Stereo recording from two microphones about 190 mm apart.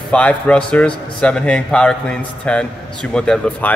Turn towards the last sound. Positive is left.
turn(degrees=5)  # may be behind; listen again after turning